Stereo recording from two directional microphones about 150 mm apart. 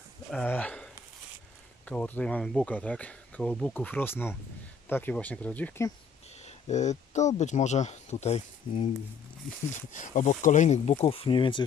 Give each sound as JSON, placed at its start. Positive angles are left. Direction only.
{"t": 0.3, "sound": "speech", "side_deg": 10}
{"t": 1.9, "sound": "speech", "side_deg": 10}
{"t": 6.4, "sound": "speech", "side_deg": 50}
{"t": 9.9, "sound": "speech", "side_deg": 55}